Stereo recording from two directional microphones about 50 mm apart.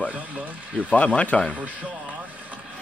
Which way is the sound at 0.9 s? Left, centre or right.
Left.